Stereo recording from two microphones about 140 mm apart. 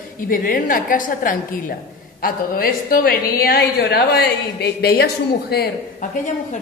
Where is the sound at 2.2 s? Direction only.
90° left.